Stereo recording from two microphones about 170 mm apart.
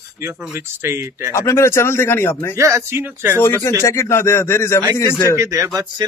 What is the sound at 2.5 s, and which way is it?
Speech, 15° right (ahead or behind).